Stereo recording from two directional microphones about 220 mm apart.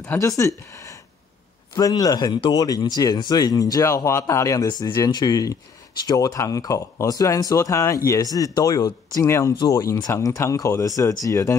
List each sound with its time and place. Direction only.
0.0 s speech: 15° left (ahead or behind)